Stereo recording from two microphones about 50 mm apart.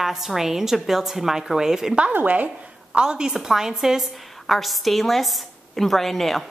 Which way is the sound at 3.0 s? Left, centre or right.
Centre.